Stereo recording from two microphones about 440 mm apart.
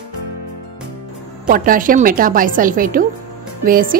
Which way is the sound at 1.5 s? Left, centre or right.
Centre.